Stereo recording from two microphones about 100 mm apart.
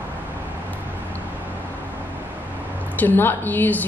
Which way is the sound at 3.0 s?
20° left (ahead or behind).